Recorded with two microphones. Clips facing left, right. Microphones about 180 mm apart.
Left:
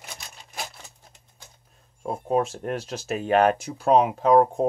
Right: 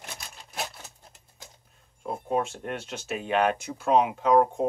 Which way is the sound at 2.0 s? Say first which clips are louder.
Left 4 dB; 40° left (ahead or behind).